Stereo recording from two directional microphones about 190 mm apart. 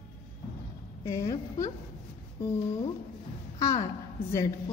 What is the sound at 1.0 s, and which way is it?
Speech, 15° left (ahead or behind).